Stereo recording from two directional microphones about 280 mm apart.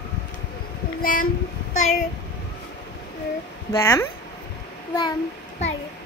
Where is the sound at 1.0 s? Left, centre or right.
Left.